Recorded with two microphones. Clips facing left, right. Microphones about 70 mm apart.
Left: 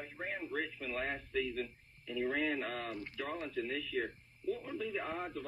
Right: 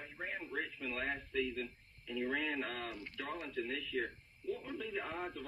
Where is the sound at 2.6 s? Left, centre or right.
Centre.